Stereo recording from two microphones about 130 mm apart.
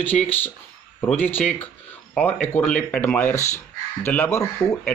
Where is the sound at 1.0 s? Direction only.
10° left (ahead or behind).